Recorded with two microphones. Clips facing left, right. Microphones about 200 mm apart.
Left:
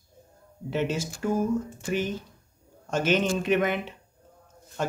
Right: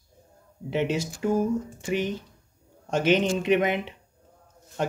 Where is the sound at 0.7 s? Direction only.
15° right (ahead or behind).